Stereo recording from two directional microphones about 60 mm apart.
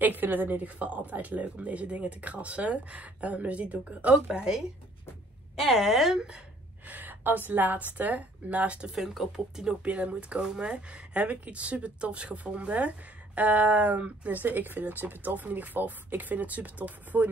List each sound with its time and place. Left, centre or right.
0.0 s speech: right
4.3 s speech: centre
5.7 s speech: centre
6.9 s speech: right
8.9 s speech: centre
9.8 s speech: right